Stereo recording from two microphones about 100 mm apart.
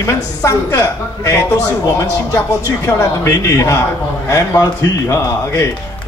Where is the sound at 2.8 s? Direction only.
30° left (ahead or behind).